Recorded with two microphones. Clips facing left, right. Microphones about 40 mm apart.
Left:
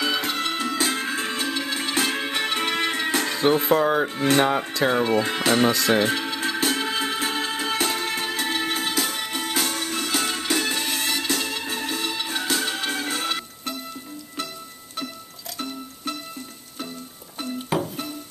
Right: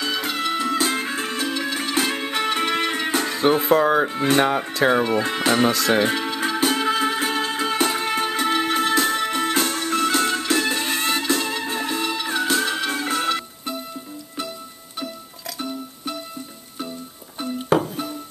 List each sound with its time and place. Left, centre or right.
0.0 s music: centre
1.4 s music: centre
3.3 s speech: centre
5.7 s music: centre
15.5 s music: centre